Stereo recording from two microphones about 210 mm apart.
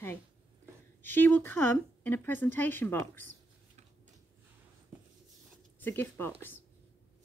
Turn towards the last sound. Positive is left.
turn(degrees=10)  # may be behind; listen again after turning